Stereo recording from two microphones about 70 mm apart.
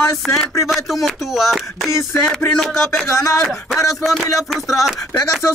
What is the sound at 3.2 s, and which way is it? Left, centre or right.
Speech, left.